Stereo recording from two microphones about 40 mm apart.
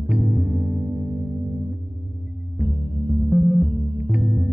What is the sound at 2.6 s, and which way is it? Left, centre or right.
Music, centre.